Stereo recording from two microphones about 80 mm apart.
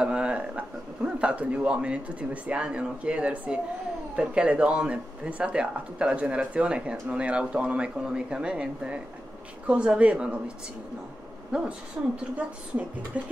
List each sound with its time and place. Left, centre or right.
0.0 s speech: centre
11.5 s a woman's voice: centre